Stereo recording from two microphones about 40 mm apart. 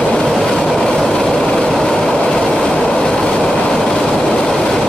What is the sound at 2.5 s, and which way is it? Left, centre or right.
Train, centre.